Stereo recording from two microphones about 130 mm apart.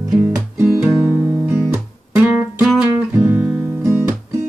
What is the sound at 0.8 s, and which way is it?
Guitar, 10° right (ahead or behind).